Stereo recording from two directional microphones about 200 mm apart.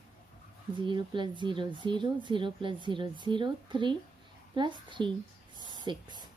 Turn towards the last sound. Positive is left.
turn(degrees=-20)  # may be behind; listen again after turning